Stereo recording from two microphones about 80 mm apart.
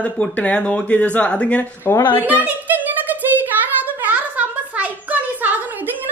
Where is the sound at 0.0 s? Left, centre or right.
Centre.